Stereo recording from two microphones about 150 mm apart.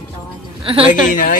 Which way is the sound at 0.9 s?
65° left (ahead or behind).